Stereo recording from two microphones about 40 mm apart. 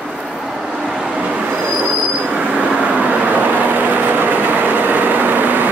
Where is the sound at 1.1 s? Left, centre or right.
Right.